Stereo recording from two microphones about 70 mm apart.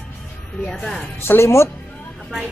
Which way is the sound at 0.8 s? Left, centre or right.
Centre.